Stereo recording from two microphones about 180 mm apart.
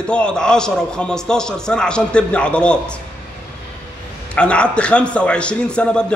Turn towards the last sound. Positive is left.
turn(degrees=5)  # may be behind; listen again after turning